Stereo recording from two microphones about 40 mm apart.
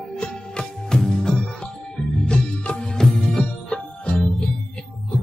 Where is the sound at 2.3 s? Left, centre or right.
Left.